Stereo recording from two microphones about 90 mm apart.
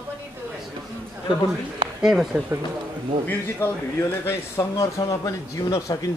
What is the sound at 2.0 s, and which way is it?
Speech, 5° right (ahead or behind).